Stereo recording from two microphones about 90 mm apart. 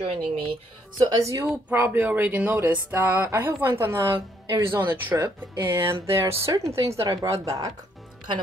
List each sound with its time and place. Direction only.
0.0 s speech: 90° right
0.9 s speech: 50° right (ahead or behind)
1.2 s a woman's voice: 35° right (ahead or behind)
1.7 s a woman's voice: 20° right (ahead or behind); by 7.7 s 40° right (ahead or behind)